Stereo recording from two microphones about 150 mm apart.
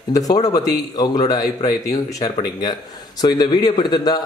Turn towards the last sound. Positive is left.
turn(degrees=30)  # may be behind; listen again after turning